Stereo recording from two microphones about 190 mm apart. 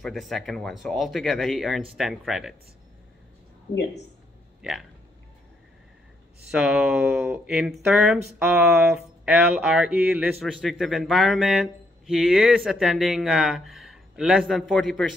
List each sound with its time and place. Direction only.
0.0 s speech: centre (ahead or behind)
4.6 s speech: 5° right (ahead or behind)
6.5 s speech: 5° right (ahead or behind)